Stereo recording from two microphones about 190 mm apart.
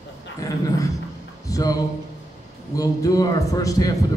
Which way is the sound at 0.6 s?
20° left (ahead or behind).